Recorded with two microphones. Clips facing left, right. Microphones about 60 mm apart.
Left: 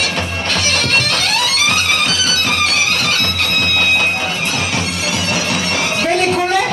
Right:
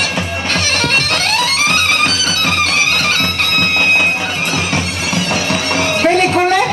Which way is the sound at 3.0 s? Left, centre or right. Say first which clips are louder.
Right 2 dB; right.